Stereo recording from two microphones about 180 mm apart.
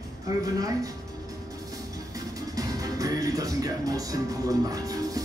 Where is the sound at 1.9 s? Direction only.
20° right (ahead or behind).